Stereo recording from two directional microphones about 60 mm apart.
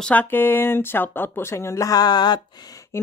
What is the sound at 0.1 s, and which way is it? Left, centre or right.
Speech, left.